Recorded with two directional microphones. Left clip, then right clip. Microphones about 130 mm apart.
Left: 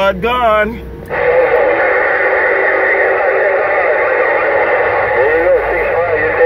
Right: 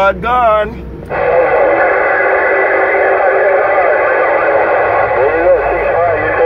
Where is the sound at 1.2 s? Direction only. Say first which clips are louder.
Even; 15° left (ahead or behind).